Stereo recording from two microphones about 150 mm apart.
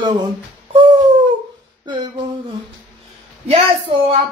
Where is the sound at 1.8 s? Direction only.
30° right (ahead or behind).